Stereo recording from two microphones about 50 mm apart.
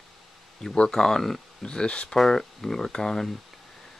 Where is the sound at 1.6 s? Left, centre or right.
Centre.